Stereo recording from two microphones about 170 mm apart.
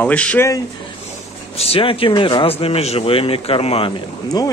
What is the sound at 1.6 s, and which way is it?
Speech, 35° left (ahead or behind).